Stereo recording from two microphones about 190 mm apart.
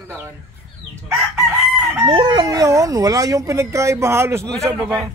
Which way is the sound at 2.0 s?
25° right (ahead or behind).